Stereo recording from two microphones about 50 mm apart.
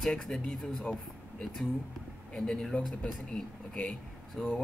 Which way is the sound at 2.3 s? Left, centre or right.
Centre.